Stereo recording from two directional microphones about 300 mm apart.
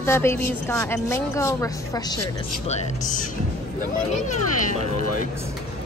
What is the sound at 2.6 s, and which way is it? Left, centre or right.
Speech, left.